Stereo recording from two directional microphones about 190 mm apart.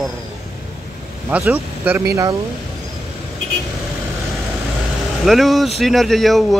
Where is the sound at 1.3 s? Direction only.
10° right (ahead or behind).